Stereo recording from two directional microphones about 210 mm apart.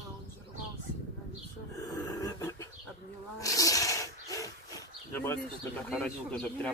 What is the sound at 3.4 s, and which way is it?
Roaring cats, 15° left (ahead or behind).